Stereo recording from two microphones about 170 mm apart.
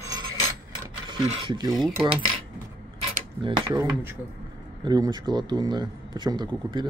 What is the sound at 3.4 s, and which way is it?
Speech, 30° right (ahead or behind).